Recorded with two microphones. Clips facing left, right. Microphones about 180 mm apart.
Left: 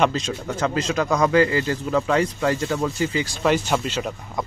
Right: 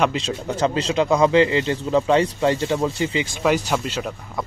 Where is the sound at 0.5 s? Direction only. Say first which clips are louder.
Right 2 dB; 30° right (ahead or behind).